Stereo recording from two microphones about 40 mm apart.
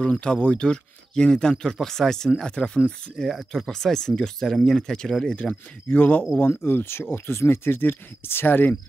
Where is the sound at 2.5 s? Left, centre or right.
Left.